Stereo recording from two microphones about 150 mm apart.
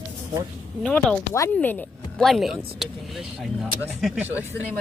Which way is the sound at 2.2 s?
Centre (ahead or behind).